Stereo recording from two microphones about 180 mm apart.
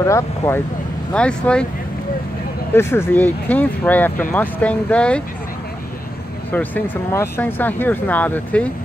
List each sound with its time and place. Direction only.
0.0 s speech: 15° left (ahead or behind)
1.1 s speech: 5° left (ahead or behind)
2.7 s speech: 15° left (ahead or behind)
6.5 s speech: 10° left (ahead or behind)